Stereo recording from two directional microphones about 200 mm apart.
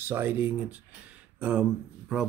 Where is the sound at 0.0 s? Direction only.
10° right (ahead or behind).